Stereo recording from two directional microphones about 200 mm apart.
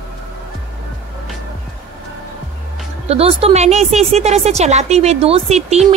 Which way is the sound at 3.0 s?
30° right (ahead or behind).